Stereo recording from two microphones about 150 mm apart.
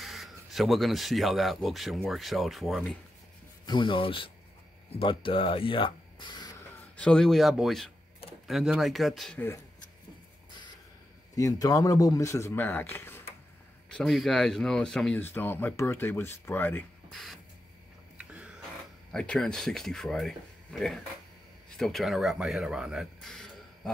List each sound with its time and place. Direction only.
0.0 s speech: centre (ahead or behind)
3.6 s speech: 35° left (ahead or behind)
7.0 s speech: 5° left (ahead or behind)
11.3 s a man's voice: 25° left (ahead or behind)
13.8 s speech: 5° left (ahead or behind)
17.1 s speech: centre (ahead or behind)
18.1 s a sound: 10° right (ahead or behind)
19.1 s speech: 5° left (ahead or behind)